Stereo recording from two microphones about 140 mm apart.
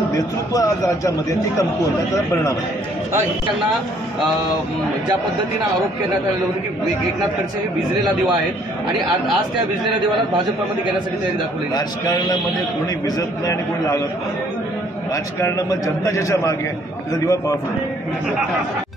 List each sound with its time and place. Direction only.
0.5 s a man's voice: 25° left (ahead or behind)
13.5 s a man's voice: 20° left (ahead or behind)
15.4 s a man's voice: 25° left (ahead or behind)